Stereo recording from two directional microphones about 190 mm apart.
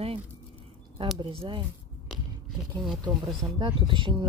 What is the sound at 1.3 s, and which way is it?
Speech, 25° right (ahead or behind).